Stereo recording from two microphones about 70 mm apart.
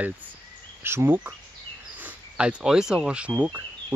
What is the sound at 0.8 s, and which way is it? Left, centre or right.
Speech, right.